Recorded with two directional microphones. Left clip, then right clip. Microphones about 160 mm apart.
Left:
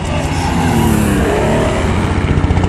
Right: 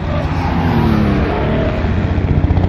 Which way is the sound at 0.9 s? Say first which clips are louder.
Left 2 dB; 80° left.